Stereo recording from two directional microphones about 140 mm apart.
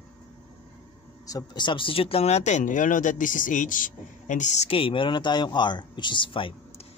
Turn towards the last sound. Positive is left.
turn(degrees=40)  # may be behind; listen again after turning